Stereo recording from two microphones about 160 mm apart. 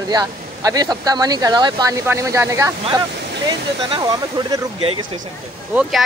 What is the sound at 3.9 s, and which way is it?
Speech, 25° right (ahead or behind).